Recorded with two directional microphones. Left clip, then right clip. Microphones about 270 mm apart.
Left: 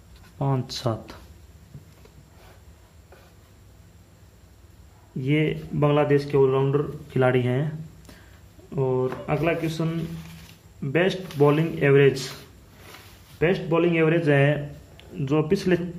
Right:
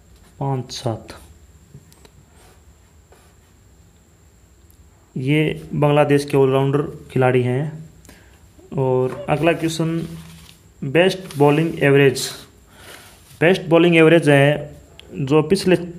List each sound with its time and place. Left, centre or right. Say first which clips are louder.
0.4 s speech: right 3 dB; centre
5.1 s speech: right 5 dB; right
8.6 s speech: right 5 dB; right
13.4 s speech: right 7 dB; right